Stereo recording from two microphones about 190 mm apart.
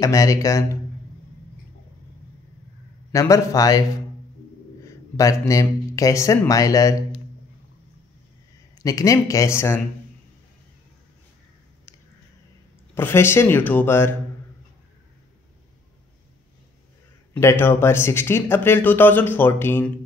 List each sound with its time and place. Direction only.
0.0 s speech: 15° left (ahead or behind)
3.1 s speech: 15° left (ahead or behind)
4.8 s speech: 15° left (ahead or behind)
8.7 s speech: 20° left (ahead or behind)
12.9 s speech: 10° left (ahead or behind)
17.3 s speech: 10° left (ahead or behind)